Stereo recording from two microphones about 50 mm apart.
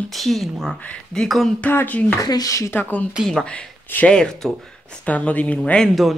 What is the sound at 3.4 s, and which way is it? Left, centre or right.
Speech, left.